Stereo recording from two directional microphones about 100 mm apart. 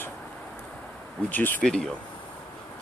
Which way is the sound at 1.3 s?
20° left (ahead or behind).